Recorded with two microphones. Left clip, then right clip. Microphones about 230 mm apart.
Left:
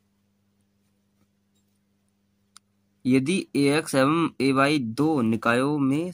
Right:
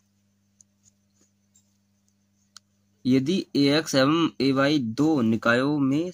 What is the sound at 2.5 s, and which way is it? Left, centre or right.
Speech, centre.